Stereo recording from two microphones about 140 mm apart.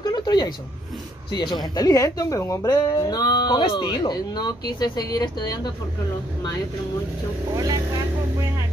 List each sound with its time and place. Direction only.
0.0 s a sound: 30° left (ahead or behind)
1.3 s speech: 30° left (ahead or behind)
7.5 s speech: 25° right (ahead or behind)